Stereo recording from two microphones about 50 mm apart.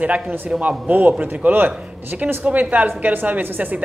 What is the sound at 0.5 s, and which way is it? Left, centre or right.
Speech, centre.